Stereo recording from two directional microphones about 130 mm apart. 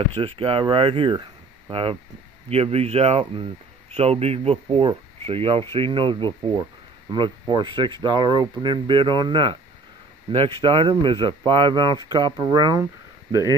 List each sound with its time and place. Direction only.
0.1 s speech: 45° right (ahead or behind)
13.3 s speech: 30° left (ahead or behind)